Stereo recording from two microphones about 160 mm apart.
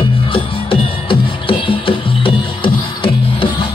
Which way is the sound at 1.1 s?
35° left (ahead or behind).